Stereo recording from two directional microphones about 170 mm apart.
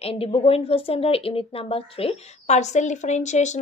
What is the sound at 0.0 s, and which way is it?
A woman's voice, 35° left (ahead or behind).